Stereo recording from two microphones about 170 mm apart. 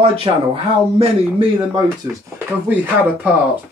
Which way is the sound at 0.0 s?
35° right (ahead or behind).